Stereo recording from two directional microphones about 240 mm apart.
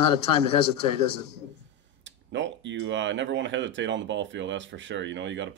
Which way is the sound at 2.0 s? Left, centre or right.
Right.